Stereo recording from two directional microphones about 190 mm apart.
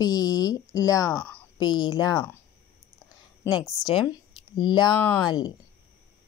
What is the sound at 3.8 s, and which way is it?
Speech, 25° left (ahead or behind).